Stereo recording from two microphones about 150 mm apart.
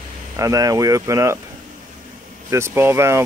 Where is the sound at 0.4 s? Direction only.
20° right (ahead or behind).